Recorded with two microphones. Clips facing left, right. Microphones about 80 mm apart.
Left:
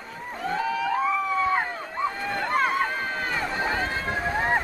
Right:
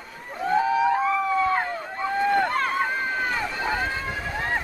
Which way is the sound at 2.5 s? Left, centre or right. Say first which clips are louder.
Left 2 dB; centre.